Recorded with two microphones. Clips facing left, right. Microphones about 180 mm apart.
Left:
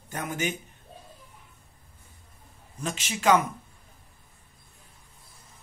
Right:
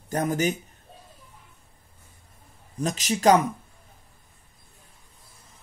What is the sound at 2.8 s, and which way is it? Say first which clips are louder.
Speech: right 7 dB; 40° right (ahead or behind).